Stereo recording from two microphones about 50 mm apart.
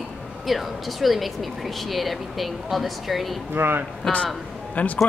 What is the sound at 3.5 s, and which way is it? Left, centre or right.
Speech, right.